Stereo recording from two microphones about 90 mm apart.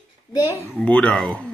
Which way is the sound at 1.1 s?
5° left (ahead or behind).